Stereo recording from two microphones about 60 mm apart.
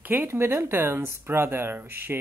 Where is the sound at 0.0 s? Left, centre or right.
Right.